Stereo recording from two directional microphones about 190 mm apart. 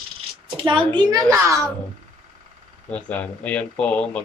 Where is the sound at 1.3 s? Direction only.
15° right (ahead or behind).